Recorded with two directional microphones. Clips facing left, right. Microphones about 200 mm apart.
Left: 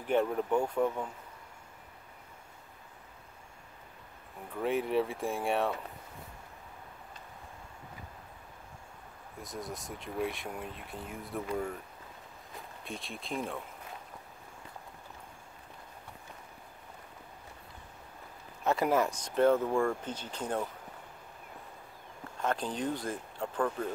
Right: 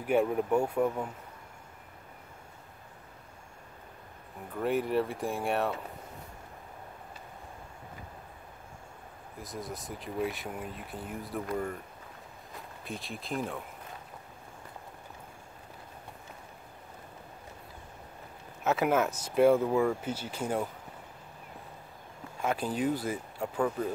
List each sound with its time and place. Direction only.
0.0 s speech: 10° right (ahead or behind)
4.6 s speech: centre (ahead or behind)
9.4 s speech: centre (ahead or behind)
12.8 s speech: centre (ahead or behind)
18.6 s speech: centre (ahead or behind)
22.4 s speech: 10° right (ahead or behind)